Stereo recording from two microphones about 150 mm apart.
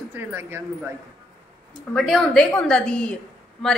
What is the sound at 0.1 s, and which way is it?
Speech, 15° right (ahead or behind).